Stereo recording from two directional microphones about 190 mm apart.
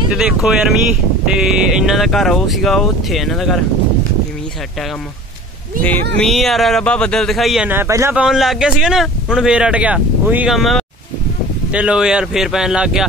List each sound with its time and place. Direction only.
0.1 s speech: 5° right (ahead or behind)
5.9 s speech: 5° left (ahead or behind)